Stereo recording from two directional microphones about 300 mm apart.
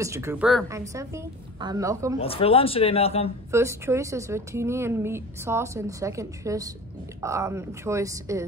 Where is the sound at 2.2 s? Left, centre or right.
Centre.